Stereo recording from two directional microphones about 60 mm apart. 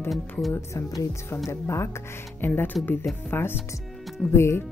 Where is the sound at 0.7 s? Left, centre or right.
Left.